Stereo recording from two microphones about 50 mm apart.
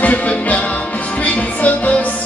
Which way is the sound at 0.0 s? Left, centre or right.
Left.